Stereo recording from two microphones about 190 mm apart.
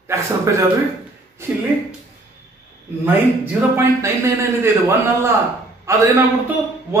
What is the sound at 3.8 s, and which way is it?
Speech, 10° right (ahead or behind).